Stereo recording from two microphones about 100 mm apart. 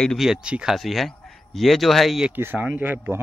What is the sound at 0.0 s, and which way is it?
Speech, 5° left (ahead or behind).